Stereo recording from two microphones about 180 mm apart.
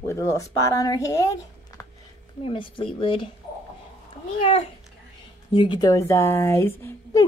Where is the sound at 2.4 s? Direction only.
30° left (ahead or behind).